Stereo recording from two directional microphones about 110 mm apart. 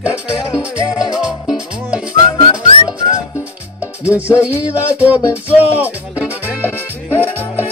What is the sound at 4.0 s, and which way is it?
Music, 10° right (ahead or behind).